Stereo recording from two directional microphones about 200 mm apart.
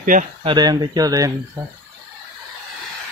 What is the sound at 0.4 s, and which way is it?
Speech, 20° right (ahead or behind).